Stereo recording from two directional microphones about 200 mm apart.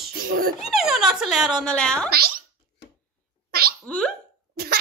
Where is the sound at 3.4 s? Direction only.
50° right (ahead or behind).